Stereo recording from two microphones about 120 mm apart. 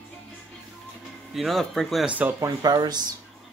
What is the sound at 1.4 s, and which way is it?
Speech, centre (ahead or behind).